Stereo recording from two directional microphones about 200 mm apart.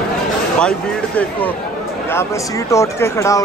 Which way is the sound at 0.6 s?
5° left (ahead or behind).